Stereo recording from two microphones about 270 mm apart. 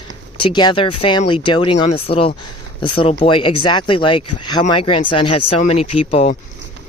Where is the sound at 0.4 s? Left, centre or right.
Centre.